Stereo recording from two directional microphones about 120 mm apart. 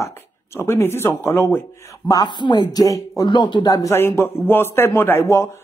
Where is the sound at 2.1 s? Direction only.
35° left (ahead or behind).